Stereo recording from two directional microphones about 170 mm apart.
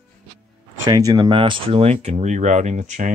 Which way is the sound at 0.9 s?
25° right (ahead or behind).